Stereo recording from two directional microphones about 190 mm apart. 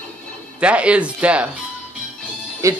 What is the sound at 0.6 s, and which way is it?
Speech, 5° right (ahead or behind).